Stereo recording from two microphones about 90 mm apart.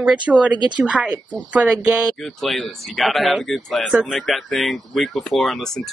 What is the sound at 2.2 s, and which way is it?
Speech, centre (ahead or behind).